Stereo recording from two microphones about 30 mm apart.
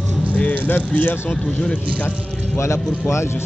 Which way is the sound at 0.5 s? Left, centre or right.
Left.